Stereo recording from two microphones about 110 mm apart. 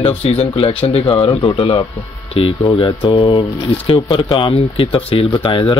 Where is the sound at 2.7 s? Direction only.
55° left (ahead or behind).